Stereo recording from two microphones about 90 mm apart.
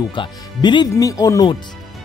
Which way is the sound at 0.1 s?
60° left (ahead or behind).